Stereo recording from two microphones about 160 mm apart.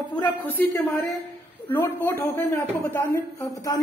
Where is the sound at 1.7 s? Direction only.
10° left (ahead or behind).